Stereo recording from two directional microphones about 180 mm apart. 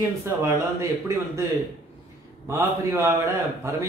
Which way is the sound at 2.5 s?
15° right (ahead or behind).